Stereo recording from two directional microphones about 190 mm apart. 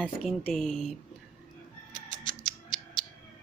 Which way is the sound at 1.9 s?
40° right (ahead or behind).